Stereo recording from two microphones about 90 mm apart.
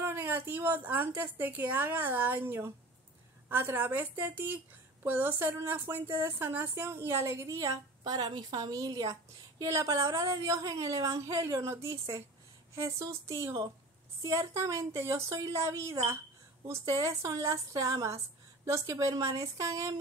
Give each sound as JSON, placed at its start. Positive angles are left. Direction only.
{"t": 0.0, "sound": "a woman's voice", "side_deg": -25}